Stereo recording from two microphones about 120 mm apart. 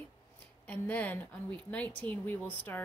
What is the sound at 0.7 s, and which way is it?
A woman's voice, 15° left (ahead or behind).